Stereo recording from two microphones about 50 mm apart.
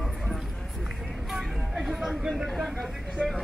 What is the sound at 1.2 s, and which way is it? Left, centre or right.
Vehicle, centre.